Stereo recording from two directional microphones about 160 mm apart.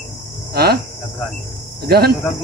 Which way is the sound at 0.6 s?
75° right (ahead or behind).